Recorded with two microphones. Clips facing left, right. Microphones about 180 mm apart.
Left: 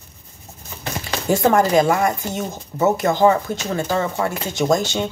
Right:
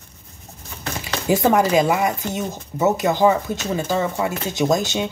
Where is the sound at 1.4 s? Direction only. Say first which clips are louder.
Left 1 dB; 5° right (ahead or behind).